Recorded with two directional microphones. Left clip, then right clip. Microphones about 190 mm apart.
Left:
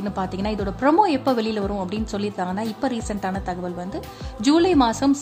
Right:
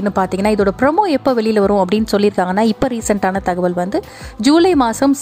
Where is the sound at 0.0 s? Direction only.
40° right (ahead or behind).